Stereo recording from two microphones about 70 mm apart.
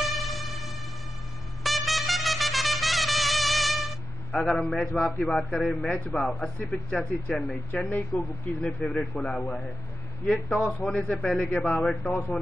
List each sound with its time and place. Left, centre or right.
0.0 s music: centre
1.6 s trumpet: centre
5.5 s a man's voice: centre
5.9 s speech: centre
12.0 s a man's voice: left